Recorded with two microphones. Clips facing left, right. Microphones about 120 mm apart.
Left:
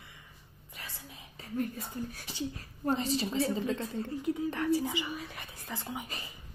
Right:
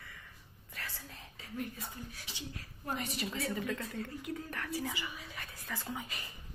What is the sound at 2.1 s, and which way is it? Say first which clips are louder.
A woman's voice: left 8 dB; 40° left (ahead or behind).